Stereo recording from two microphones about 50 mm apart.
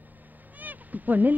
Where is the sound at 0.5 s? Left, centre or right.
Right.